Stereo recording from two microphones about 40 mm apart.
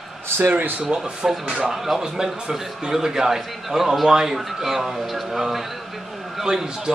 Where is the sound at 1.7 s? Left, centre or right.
Centre.